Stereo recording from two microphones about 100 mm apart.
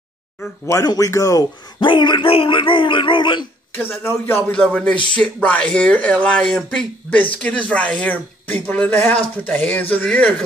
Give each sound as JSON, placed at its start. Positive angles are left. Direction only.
{"t": 0.8, "sound": "speech", "side_deg": 35}
{"t": 1.8, "sound": "a man's voice", "side_deg": 50}
{"t": 2.3, "sound": "speech", "side_deg": 60}
{"t": 3.7, "sound": "speech", "side_deg": 20}
{"t": 4.5, "sound": "speech", "side_deg": 10}